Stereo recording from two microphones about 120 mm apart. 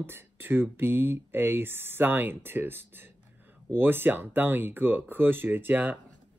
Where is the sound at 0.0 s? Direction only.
20° right (ahead or behind).